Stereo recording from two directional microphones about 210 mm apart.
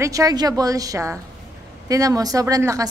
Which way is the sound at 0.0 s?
15° right (ahead or behind).